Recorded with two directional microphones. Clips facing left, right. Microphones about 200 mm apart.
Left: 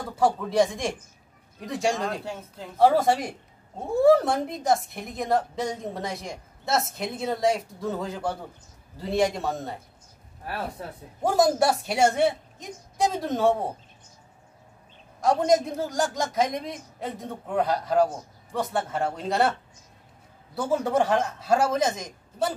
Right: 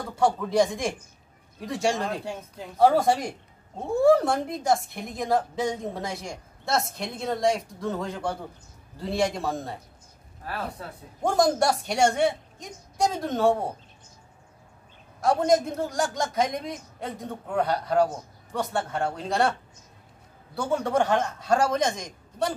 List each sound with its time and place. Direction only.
0.2 s speech: centre (ahead or behind)
11.2 s speech: 5° left (ahead or behind)
15.1 s speech: centre (ahead or behind)
20.5 s speech: centre (ahead or behind)